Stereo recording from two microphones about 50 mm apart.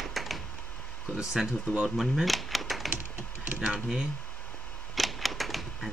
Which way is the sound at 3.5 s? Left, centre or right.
Centre.